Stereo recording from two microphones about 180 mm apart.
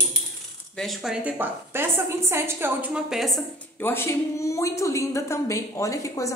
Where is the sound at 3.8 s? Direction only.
10° left (ahead or behind).